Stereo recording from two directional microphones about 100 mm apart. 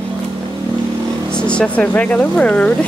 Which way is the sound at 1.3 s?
10° left (ahead or behind).